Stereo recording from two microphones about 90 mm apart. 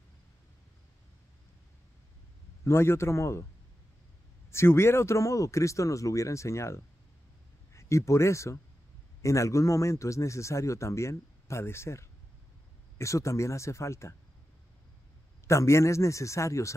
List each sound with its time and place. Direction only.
2.6 s speech: 30° left (ahead or behind)
4.5 s speech: 30° left (ahead or behind)
15.4 s speech: 30° left (ahead or behind)